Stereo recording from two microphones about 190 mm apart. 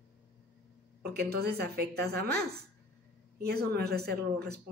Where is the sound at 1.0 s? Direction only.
55° right (ahead or behind).